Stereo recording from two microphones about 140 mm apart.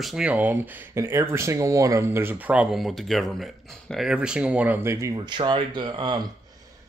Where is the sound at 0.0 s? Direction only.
5° right (ahead or behind).